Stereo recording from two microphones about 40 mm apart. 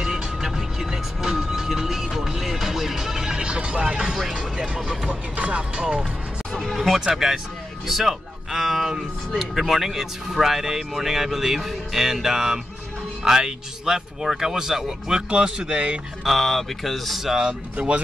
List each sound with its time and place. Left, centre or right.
0.0 s music: centre
3.4 s music: right
4.3 s vehicle: right
4.7 s speech: centre
5.3 s music: right
5.6 s speech: right
7.2 s speech: centre; by 16.0 s right
16.3 s speech: centre
17.5 s speech: right